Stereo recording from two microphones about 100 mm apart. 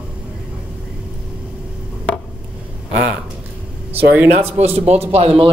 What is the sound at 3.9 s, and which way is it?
Speech, 20° right (ahead or behind).